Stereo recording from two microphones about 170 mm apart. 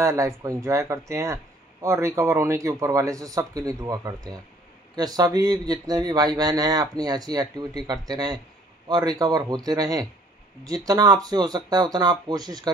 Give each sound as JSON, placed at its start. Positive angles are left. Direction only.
{"t": 0.0, "sound": "speech", "side_deg": -20}